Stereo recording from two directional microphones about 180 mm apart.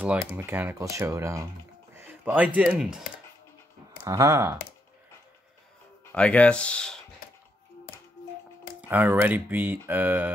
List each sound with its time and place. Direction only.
0.4 s speech: 10° right (ahead or behind)
4.0 s speech: 15° right (ahead or behind)
6.1 s speech: 5° left (ahead or behind)
8.8 s speech: 10° right (ahead or behind)